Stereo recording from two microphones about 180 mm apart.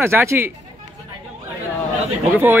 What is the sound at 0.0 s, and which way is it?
Speech, 15° right (ahead or behind).